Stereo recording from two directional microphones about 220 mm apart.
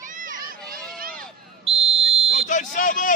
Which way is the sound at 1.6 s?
25° right (ahead or behind).